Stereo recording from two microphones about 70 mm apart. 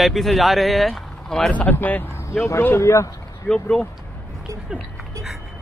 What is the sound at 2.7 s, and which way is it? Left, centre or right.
Speech, left.